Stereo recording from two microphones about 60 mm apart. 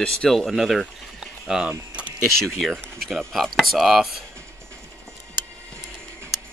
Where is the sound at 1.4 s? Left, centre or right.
Centre.